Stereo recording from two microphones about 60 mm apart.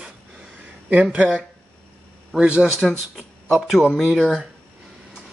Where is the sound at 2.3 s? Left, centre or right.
Centre.